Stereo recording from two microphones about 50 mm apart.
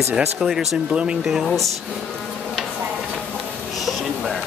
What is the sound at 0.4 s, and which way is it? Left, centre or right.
Speech, centre.